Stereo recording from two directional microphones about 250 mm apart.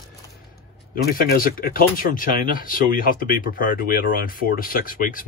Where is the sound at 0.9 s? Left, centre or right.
Left.